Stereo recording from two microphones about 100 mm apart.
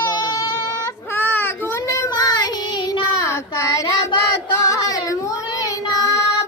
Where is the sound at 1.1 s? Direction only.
20° left (ahead or behind).